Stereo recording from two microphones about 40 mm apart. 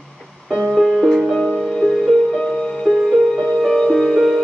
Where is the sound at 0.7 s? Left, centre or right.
Centre.